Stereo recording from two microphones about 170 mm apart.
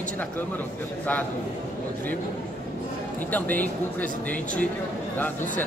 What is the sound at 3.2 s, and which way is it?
A man's voice, 10° left (ahead or behind).